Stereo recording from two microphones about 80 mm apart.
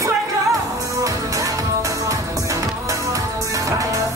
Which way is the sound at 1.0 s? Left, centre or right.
Right.